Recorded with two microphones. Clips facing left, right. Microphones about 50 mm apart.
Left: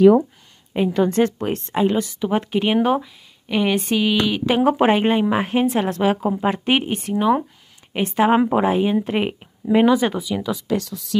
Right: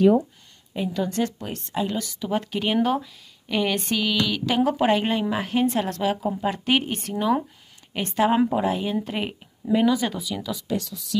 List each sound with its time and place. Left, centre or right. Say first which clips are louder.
0.7 s speech: left 7 dB; left
10.8 s speech: left 6 dB; left